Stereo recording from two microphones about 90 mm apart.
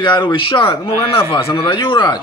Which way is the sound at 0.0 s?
65° left (ahead or behind).